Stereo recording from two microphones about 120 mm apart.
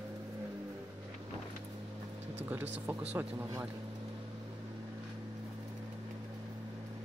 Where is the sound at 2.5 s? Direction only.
15° right (ahead or behind).